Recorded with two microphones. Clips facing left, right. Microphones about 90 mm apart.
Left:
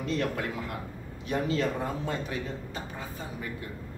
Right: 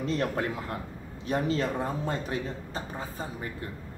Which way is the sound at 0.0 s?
30° right (ahead or behind).